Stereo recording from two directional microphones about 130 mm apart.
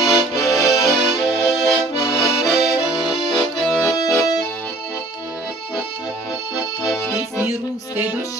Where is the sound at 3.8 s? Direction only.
25° left (ahead or behind).